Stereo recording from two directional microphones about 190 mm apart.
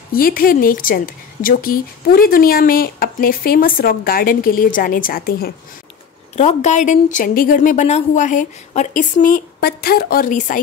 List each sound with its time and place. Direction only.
0.1 s a woman's voice: 50° left (ahead or behind)
6.3 s a woman's voice: 40° left (ahead or behind)